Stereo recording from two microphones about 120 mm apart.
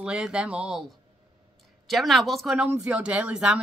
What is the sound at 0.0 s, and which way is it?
Speech, 5° right (ahead or behind).